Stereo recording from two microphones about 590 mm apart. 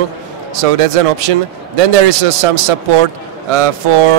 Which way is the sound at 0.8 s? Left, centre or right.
Right.